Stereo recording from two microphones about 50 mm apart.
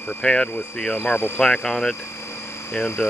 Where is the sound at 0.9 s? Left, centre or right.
Left.